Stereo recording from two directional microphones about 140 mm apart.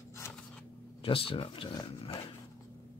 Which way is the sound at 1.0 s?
40° left (ahead or behind).